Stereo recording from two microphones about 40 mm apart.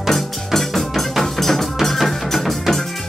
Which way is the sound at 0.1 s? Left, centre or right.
Centre.